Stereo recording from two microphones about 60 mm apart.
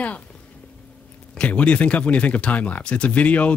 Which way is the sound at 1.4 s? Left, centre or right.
Left.